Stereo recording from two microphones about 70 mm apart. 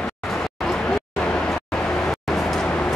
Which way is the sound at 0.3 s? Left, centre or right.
Centre.